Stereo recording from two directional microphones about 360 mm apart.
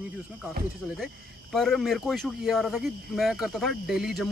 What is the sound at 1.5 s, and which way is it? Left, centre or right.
Speech, centre.